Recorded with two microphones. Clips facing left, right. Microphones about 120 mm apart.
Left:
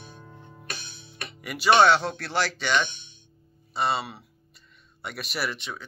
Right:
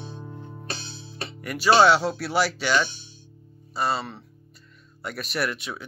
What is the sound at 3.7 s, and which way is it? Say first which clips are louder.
Speech: even; centre (ahead or behind).